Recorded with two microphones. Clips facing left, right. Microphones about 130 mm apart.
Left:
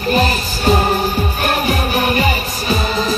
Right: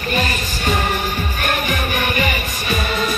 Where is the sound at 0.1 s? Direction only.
35° left (ahead or behind).